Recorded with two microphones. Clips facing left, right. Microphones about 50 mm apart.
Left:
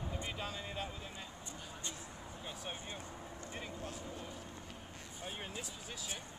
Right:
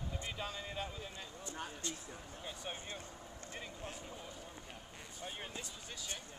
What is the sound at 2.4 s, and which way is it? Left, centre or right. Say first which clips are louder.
Speech: even; centre.